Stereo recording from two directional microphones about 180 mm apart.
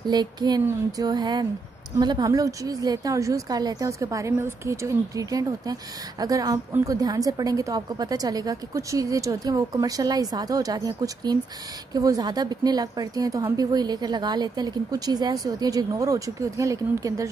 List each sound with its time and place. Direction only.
0.0 s a woman's voice: 25° right (ahead or behind)